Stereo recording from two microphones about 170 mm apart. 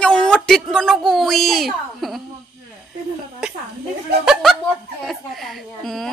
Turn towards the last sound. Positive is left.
turn(degrees=0)  # may be behind; listen again after turning